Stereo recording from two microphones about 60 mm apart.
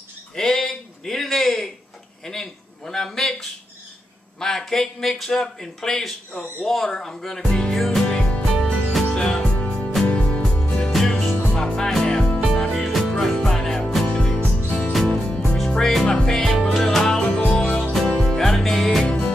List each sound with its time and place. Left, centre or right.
0.4 s a sound: centre
4.4 s speech: centre
8.1 s music: centre
11.1 s music: centre
14.0 s music: centre
14.9 s music: centre
19.0 s music: centre